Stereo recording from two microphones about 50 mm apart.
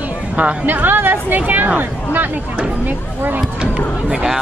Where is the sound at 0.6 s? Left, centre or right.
Right.